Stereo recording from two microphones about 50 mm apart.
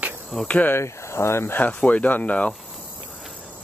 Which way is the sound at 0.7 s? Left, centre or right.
Left.